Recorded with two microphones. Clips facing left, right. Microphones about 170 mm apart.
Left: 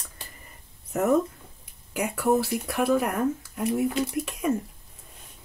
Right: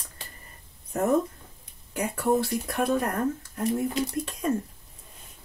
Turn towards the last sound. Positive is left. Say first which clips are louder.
# left 1 dB
turn(degrees=10)  # may be behind; listen again after turning